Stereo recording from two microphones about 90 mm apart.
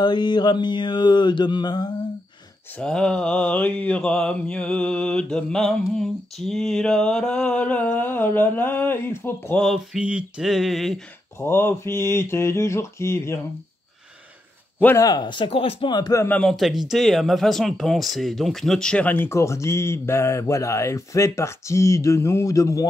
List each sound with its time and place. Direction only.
0.0 s mantra: 55° left (ahead or behind)
2.8 s mantra: 10° left (ahead or behind); by 9.6 s 25° left (ahead or behind)
9.9 s speech: 10° right (ahead or behind)
11.3 s a sound: 25° left (ahead or behind)
15.0 s a man's voice: 45° left (ahead or behind)
15.2 s speech: 65° left (ahead or behind); by 15.9 s 80° left
15.9 s a man's voice: 45° left (ahead or behind)
16.3 s mantra: 15° left (ahead or behind)
16.5 s speech: centre (ahead or behind); by 22.8 s 35° left (ahead or behind)